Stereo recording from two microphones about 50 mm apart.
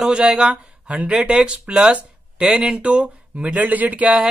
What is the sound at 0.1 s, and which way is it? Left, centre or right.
A man's voice, centre.